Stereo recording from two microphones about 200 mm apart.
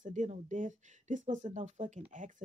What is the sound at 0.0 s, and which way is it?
Speech, 35° right (ahead or behind).